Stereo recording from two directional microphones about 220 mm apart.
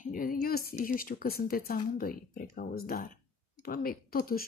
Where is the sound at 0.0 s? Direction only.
40° left (ahead or behind).